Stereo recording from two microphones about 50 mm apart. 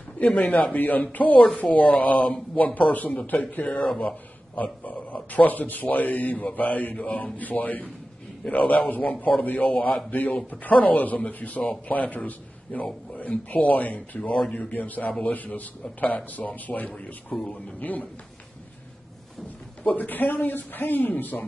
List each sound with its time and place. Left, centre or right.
0.2 s a man's voice: left
2.5 s a man's voice: left
4.8 s a man's voice: left
16.9 s speech: centre
17.5 s a man's voice: left
19.8 s a man's voice: left